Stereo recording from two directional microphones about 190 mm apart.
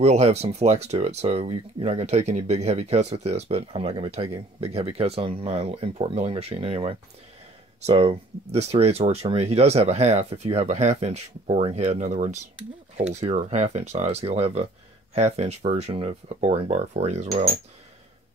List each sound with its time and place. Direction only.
0.0 s speech: 35° right (ahead or behind)